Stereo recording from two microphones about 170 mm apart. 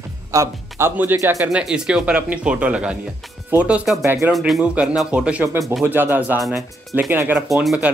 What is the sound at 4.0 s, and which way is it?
Speech, 15° right (ahead or behind).